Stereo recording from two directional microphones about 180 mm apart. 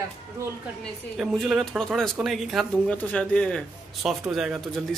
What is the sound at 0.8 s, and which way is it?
Speech, centre (ahead or behind).